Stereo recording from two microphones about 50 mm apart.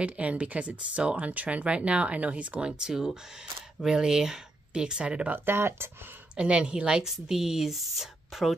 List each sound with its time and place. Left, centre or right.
0.0 s speech: right
2.8 s a woman's voice: centre
5.3 s speech: right
6.3 s a woman's voice: right; by 8.5 s centre